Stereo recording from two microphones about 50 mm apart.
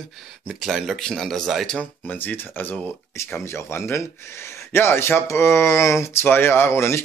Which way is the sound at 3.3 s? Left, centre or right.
Left.